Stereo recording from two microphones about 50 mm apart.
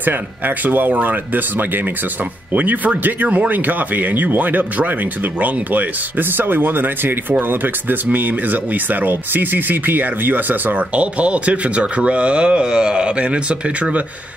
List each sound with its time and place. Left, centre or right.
0.7 s speech: right